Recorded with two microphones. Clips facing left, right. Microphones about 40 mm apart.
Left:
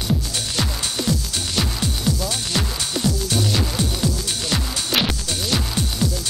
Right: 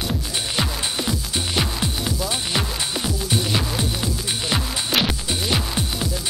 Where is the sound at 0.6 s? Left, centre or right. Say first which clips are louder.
Even; centre.